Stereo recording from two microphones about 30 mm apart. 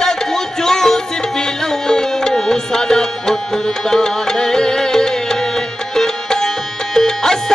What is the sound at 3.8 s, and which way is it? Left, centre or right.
Music, centre.